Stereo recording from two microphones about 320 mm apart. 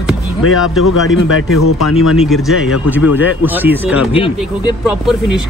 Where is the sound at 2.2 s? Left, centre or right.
Centre.